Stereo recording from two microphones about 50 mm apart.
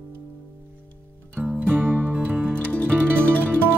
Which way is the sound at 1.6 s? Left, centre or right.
Right.